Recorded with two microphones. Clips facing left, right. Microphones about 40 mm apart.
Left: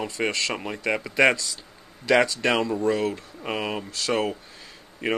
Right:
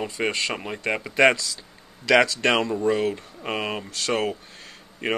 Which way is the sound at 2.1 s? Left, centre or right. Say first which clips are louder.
Right 2 dB; right.